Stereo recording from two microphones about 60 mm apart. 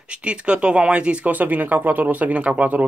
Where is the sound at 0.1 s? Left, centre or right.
Centre.